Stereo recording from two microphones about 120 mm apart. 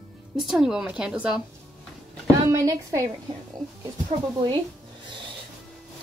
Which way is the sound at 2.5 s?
25° right (ahead or behind).